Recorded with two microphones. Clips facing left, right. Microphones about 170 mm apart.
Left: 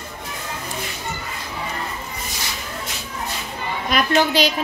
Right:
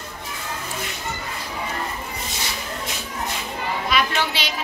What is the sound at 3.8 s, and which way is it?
Speech, 45° left (ahead or behind).